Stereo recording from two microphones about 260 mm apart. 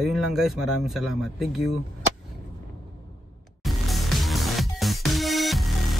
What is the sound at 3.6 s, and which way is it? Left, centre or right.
Music, centre.